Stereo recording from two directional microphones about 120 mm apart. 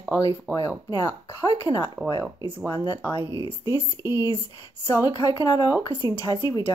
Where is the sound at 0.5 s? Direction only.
25° left (ahead or behind).